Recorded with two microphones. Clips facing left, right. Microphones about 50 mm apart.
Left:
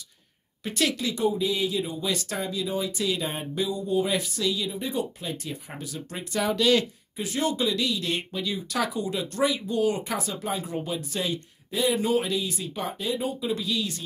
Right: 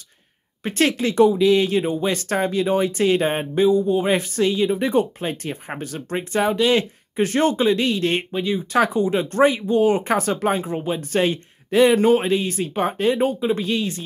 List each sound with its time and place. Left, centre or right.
0.7 s speech: right
1.1 s speech: right
4.7 s speech: right
7.2 s speech: right
10.6 s speech: right
11.0 s speech: right
12.1 s speech: right
13.4 s speech: right